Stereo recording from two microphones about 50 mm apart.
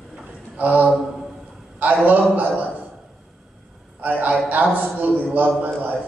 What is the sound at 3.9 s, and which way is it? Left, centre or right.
A man's voice, right.